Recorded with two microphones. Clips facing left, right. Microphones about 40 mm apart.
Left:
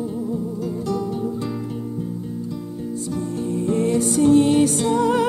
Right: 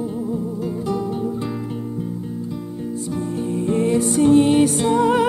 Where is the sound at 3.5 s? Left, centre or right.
Right.